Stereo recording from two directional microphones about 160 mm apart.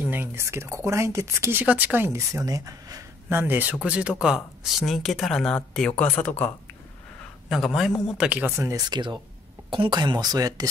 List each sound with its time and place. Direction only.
0.0 s speech: 15° right (ahead or behind); by 6.5 s 10° left (ahead or behind)
7.4 s a man's voice: centre (ahead or behind); by 10.7 s 25° right (ahead or behind)